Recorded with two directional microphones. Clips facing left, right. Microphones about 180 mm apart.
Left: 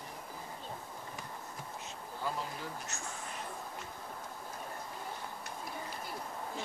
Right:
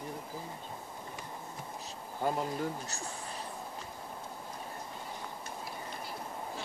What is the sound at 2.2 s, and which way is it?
Speech, 50° right (ahead or behind).